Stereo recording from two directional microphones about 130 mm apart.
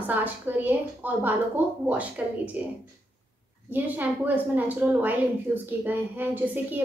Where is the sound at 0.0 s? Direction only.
15° right (ahead or behind).